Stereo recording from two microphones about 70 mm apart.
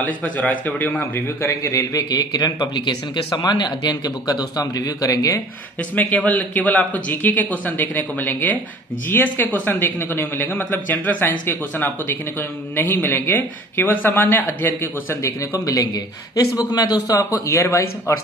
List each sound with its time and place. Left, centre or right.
0.0 s speech: left
1.5 s speech: left
5.9 s speech: left
15.2 s speech: left